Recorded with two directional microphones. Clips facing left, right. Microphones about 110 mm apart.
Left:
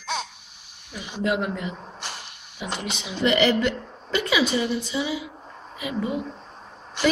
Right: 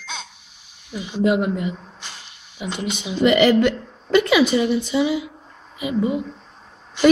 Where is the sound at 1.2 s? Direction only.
15° right (ahead or behind).